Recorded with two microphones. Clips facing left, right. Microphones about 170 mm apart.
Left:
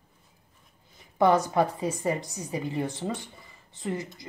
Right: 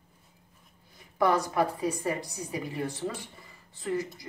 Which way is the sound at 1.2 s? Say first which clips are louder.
Left 3 dB; 25° left (ahead or behind).